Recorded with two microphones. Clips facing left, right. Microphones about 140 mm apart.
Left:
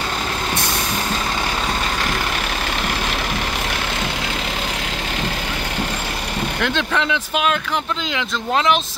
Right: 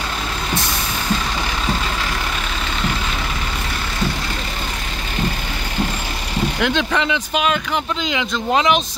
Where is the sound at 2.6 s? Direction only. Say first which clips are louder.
Even; 70° left (ahead or behind).